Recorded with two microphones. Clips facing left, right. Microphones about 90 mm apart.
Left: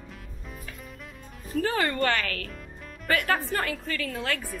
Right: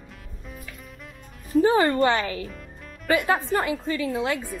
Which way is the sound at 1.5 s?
20° right (ahead or behind).